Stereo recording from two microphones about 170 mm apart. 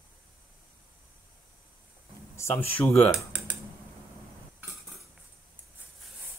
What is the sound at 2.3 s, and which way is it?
Speech, 15° left (ahead or behind).